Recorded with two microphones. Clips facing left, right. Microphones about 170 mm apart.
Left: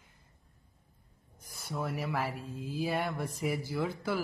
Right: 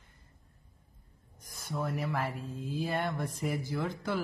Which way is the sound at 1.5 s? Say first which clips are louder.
Right 1 dB; 5° left (ahead or behind).